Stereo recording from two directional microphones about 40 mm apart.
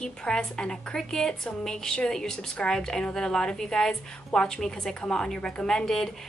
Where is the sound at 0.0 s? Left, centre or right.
Left.